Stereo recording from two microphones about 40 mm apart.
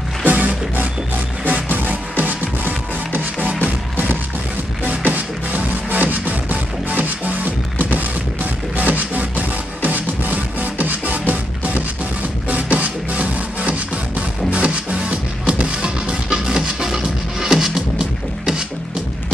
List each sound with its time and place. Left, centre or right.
0.2 s music: right; by 18.6 s centre